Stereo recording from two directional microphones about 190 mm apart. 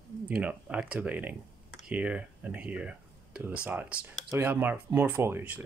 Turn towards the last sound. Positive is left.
turn(degrees=-10)  # may be behind; listen again after turning